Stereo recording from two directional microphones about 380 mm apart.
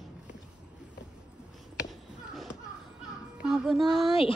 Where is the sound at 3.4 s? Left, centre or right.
Centre.